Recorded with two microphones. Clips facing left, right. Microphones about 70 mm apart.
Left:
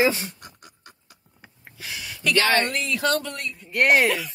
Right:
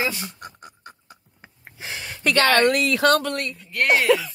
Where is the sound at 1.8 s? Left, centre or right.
Right.